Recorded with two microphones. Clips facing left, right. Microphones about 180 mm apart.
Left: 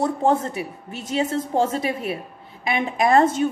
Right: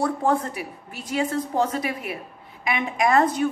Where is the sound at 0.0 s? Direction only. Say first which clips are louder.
Left 2 dB; 25° left (ahead or behind).